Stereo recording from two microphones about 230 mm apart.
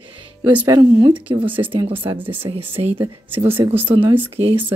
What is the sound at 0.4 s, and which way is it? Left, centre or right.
Speech, centre.